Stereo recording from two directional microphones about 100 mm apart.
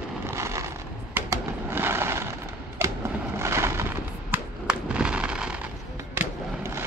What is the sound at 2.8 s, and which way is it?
Skateboard, 25° right (ahead or behind).